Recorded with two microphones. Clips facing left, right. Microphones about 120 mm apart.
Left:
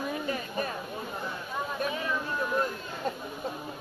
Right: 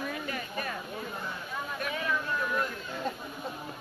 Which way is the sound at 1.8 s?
25° left (ahead or behind).